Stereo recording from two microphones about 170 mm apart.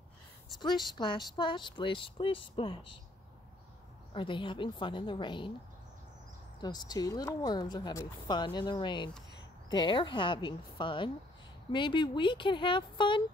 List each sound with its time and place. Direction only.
0.6 s a woman's voice: 25° left (ahead or behind)
4.1 s a woman's voice: 30° left (ahead or behind)
6.6 s a woman's voice: 25° left (ahead or behind)